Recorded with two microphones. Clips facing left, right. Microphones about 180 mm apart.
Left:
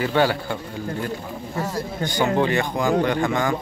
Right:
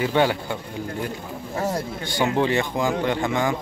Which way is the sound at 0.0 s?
20° right (ahead or behind).